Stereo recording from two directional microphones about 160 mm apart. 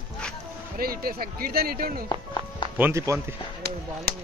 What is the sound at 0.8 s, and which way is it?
Speech, 70° right (ahead or behind).